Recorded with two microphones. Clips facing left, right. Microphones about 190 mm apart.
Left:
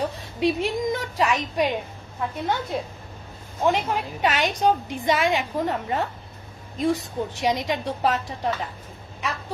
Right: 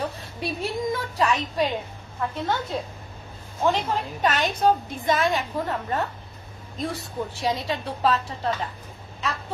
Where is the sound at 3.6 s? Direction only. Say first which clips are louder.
Left 1 dB; 10° left (ahead or behind).